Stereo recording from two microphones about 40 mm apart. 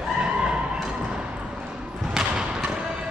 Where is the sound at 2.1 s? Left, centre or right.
Centre.